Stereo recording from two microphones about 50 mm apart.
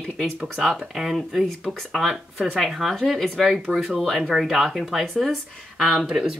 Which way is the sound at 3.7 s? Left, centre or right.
Right.